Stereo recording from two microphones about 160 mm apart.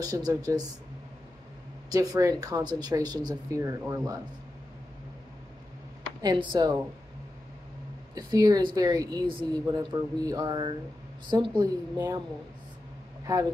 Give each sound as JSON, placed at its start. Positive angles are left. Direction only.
{"t": 0.0, "sound": "a woman's voice", "side_deg": -25}
{"t": 1.9, "sound": "a woman's voice", "side_deg": -20}
{"t": 6.2, "sound": "a woman's voice", "side_deg": -30}
{"t": 8.1, "sound": "a woman's voice", "side_deg": -25}
{"t": 13.3, "sound": "a woman's voice", "side_deg": -20}